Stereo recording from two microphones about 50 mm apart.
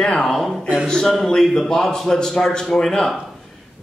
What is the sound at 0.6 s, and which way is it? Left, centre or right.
Speech, right.